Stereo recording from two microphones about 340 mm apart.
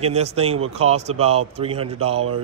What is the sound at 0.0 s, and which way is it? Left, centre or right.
A man's voice, centre.